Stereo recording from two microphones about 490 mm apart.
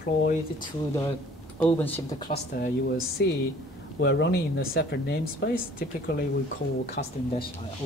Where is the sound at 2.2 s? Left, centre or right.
Centre.